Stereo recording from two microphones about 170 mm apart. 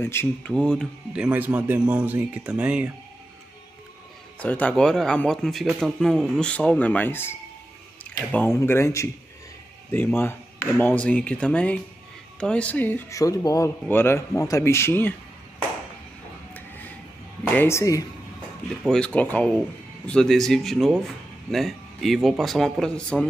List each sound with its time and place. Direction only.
0.0 s a man's voice: 15° left (ahead or behind)
1.1 s a man's voice: 5° right (ahead or behind)
4.4 s a man's voice: 10° left (ahead or behind)
17.5 s speech: 15° left (ahead or behind)
18.9 s a man's voice: 5° left (ahead or behind)